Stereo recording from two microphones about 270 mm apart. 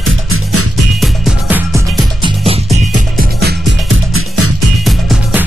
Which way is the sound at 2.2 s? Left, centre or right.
Centre.